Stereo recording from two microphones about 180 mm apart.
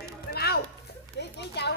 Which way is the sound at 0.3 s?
60° left (ahead or behind).